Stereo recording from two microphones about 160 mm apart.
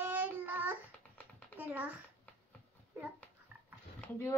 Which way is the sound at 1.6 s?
10° right (ahead or behind).